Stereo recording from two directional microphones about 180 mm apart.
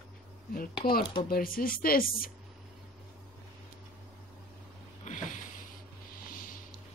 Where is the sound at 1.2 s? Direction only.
55° left (ahead or behind).